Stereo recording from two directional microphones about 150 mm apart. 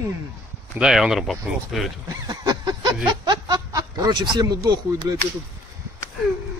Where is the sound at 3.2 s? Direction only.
25° right (ahead or behind).